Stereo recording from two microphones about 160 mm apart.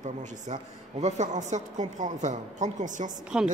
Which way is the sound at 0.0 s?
50° right (ahead or behind).